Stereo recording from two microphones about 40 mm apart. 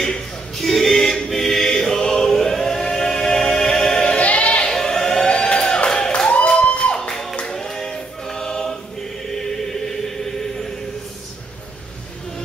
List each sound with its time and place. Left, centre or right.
0.0 s choir: centre
4.0 s music: left
4.6 s music: centre
5.3 s music: left
6.0 s a sound: left
7.0 s music: centre
7.4 s choir: centre
9.7 s chant: centre